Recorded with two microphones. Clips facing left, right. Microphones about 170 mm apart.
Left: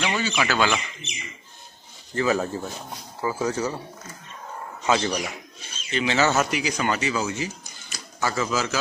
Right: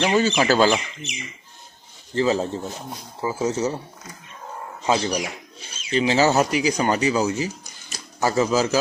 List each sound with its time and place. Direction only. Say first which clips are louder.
0.0 s speech: right 6 dB; 40° right (ahead or behind)
2.1 s speech: right 2 dB; 25° right (ahead or behind)
4.9 s speech: right 1 dB; 10° right (ahead or behind)
5.9 s speech: right 4 dB; 35° right (ahead or behind)